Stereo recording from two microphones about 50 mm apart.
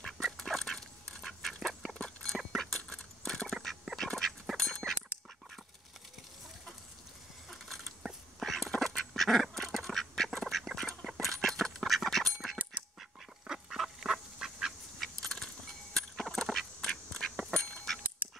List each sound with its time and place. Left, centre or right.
0.0 s duck: centre
2.0 s a sound: centre
2.3 s duck: centre
4.6 s quack: centre
7.4 s a sound: centre
8.0 s duck: centre
13.5 s duck: centre
15.0 s keys jangling: centre
16.9 s duck: centre